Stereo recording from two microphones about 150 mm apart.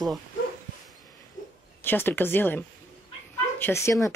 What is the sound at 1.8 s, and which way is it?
Speech, 15° left (ahead or behind).